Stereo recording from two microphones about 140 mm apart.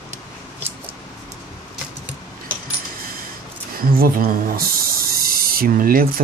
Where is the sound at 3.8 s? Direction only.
90° right.